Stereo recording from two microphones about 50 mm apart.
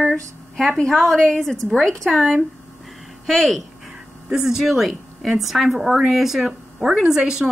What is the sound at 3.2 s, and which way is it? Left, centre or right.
Speech, centre.